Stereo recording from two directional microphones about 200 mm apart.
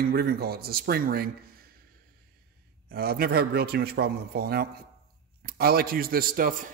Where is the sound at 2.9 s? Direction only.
50° right (ahead or behind).